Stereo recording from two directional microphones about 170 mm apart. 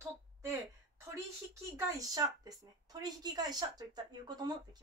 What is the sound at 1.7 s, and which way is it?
A woman's voice, 20° right (ahead or behind).